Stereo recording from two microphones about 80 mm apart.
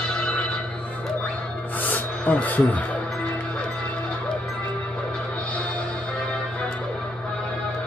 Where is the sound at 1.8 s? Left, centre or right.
Centre.